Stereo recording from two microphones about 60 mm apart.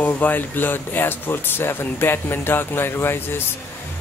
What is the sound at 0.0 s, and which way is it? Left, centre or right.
A man's voice, left.